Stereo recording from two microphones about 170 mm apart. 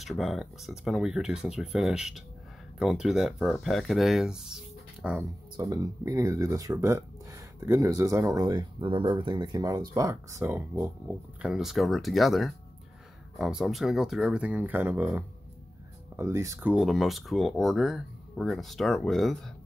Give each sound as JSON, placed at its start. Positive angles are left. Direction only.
{"t": 0.0, "sound": "speech", "side_deg": 0}
{"t": 5.6, "sound": "speech", "side_deg": -20}
{"t": 11.4, "sound": "speech", "side_deg": -5}